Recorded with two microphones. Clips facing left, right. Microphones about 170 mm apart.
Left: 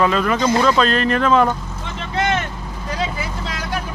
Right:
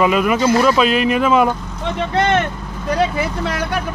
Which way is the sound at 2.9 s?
60° right (ahead or behind).